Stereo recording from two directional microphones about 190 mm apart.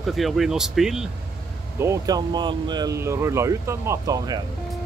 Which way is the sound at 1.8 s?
20° right (ahead or behind).